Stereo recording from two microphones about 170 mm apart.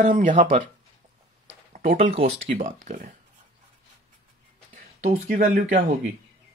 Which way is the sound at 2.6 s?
50° right (ahead or behind).